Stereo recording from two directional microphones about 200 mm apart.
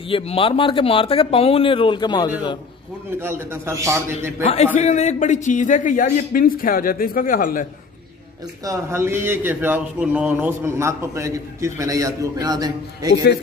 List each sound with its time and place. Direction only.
0.1 s speech: 25° left (ahead or behind)
3.2 s speech: 10° right (ahead or behind)
4.7 s a man's voice: 35° left (ahead or behind)
8.6 s speech: 15° right (ahead or behind)
13.1 s a man's voice: 55° left (ahead or behind)